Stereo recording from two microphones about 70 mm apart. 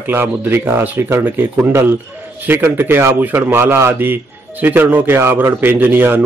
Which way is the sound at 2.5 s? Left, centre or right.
Right.